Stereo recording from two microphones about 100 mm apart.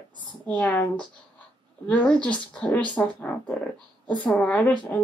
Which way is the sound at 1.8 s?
15° left (ahead or behind).